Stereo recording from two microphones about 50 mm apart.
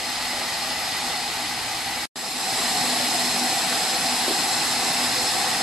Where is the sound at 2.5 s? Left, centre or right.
Centre.